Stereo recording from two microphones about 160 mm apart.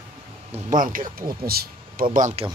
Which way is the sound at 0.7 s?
55° right (ahead or behind).